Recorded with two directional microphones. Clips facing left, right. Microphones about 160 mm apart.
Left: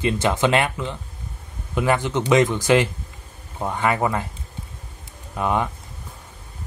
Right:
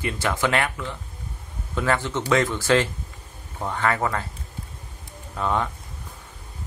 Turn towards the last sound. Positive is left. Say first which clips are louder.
# left 2 dB
turn(degrees=15)  # may be behind; listen again after turning